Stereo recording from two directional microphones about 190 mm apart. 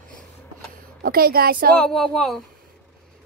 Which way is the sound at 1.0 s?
50° right (ahead or behind).